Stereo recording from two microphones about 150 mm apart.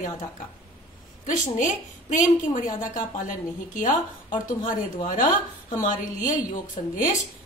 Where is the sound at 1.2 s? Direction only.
55° left (ahead or behind).